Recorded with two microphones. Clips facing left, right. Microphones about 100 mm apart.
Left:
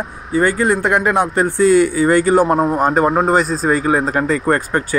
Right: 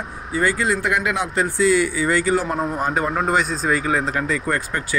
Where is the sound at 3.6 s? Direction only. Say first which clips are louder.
Left 5 dB; 40° left (ahead or behind).